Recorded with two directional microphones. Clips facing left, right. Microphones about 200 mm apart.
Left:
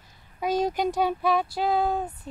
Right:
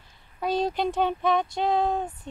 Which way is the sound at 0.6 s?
15° left (ahead or behind).